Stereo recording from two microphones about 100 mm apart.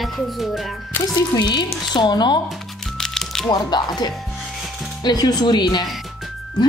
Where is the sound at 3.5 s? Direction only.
45° left (ahead or behind).